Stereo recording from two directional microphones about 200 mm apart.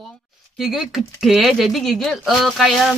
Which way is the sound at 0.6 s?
Centre (ahead or behind).